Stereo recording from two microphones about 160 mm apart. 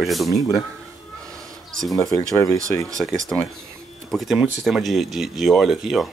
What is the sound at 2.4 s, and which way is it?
Speech, 20° left (ahead or behind).